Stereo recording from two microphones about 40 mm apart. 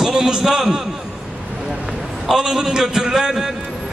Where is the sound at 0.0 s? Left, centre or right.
Centre.